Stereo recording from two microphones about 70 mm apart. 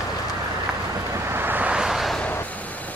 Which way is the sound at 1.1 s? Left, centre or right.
Right.